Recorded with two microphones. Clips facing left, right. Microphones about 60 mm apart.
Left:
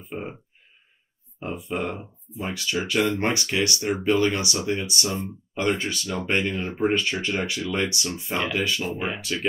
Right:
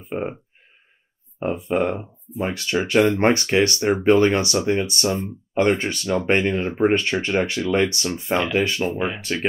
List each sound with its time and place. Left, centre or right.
0.0 s speech: right
1.4 s speech: right